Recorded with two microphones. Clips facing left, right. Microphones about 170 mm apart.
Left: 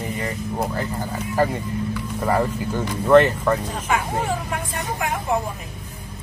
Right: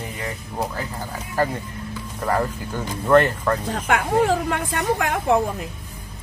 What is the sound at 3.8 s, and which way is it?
Speech, 75° right (ahead or behind).